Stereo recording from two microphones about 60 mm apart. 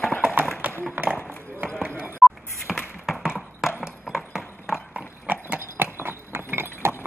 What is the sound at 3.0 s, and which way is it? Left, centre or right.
Clip-clop, centre.